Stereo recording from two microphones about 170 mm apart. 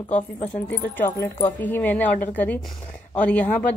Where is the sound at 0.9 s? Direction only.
15° left (ahead or behind).